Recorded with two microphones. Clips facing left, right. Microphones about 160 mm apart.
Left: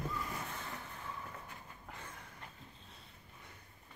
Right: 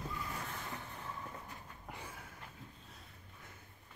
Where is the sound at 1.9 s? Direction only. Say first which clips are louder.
Right 3 dB; 10° right (ahead or behind).